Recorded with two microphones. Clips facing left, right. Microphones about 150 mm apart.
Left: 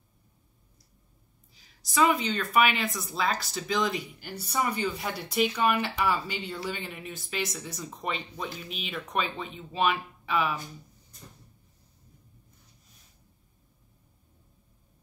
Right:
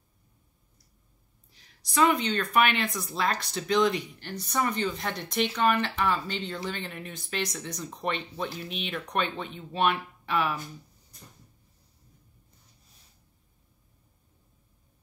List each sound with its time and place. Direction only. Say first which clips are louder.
1.5 s speech: right 1 dB; centre (ahead or behind)